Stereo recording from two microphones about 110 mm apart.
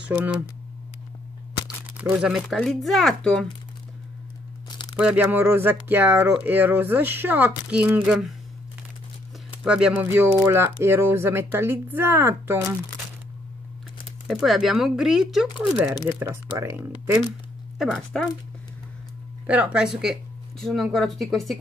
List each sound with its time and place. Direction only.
0.0 s speech: 10° right (ahead or behind)
2.0 s speech: 10° right (ahead or behind); by 3.4 s 5° left (ahead or behind)
4.9 s speech: 15° right (ahead or behind)
9.6 s speech: 5° right (ahead or behind)
10.0 s speech: 20° right (ahead or behind)
14.2 s speech: centre (ahead or behind)
16.1 s speech: 20° right (ahead or behind)
17.7 s speech: 5° left (ahead or behind)
19.4 s speech: 10° right (ahead or behind)